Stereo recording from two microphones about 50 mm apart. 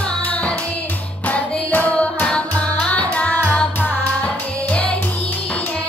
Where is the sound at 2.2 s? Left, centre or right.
Left.